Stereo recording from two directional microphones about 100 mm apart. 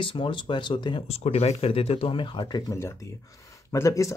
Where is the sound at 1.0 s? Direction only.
90° left; by 2.6 s 50° left (ahead or behind).